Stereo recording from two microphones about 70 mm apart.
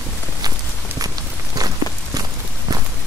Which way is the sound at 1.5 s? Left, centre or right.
Right.